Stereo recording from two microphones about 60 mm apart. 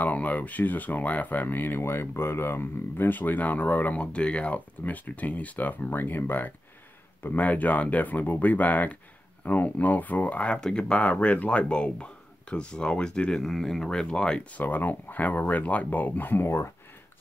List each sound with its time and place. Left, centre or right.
0.0 s speech: left
14.6 s speech: left